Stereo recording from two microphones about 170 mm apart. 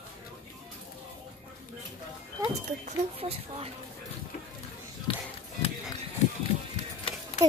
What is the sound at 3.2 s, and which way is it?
Speech, 35° right (ahead or behind).